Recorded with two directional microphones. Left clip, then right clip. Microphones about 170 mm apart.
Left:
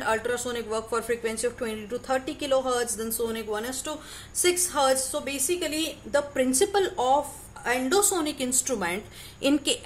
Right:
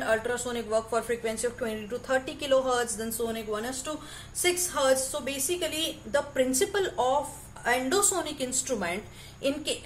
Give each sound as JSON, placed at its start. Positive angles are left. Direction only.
{"t": 0.0, "sound": "speech", "side_deg": 45}